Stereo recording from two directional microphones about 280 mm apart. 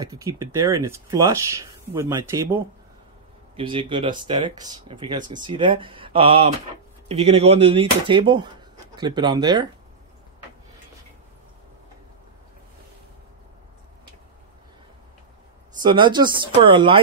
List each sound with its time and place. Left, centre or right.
0.0 s speech: centre
15.8 s speech: centre